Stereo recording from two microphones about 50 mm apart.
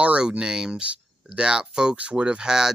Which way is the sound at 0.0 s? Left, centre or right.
Right.